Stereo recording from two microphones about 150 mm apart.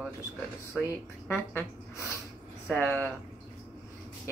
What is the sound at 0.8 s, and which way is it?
Speech, 15° left (ahead or behind).